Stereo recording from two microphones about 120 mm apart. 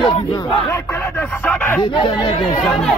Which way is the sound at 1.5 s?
15° left (ahead or behind).